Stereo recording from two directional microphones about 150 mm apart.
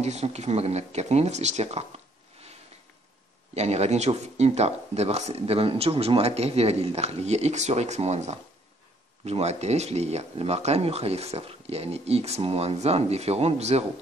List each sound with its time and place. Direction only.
0.0 s speech: 45° right (ahead or behind)
3.5 s speech: 45° right (ahead or behind)